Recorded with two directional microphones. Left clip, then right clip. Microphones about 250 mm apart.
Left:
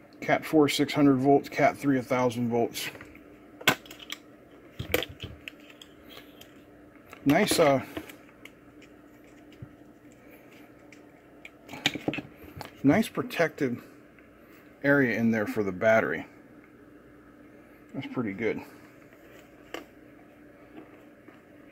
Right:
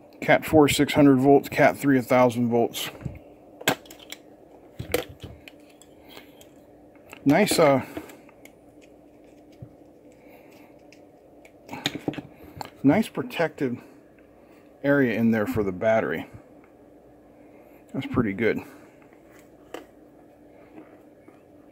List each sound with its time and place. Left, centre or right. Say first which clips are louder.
0.2 s speech: right 5 dB; right
7.1 s speech: right 3 dB; centre
11.7 s a sound: even; centre
14.8 s speech: right 2 dB; centre
17.9 s speech: right 7 dB; right